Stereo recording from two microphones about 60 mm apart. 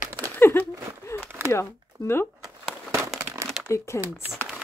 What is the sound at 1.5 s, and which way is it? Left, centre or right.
Speech, left.